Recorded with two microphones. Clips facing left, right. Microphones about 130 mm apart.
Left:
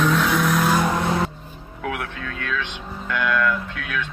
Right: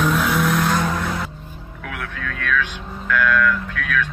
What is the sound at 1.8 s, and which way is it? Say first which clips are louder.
Speech: left 2 dB; 25° left (ahead or behind).